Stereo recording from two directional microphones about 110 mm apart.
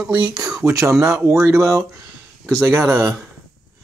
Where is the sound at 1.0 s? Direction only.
25° right (ahead or behind).